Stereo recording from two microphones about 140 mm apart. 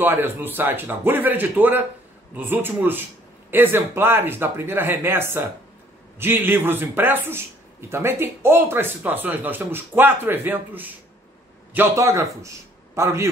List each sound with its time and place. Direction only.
0.0 s a man's voice: 15° right (ahead or behind)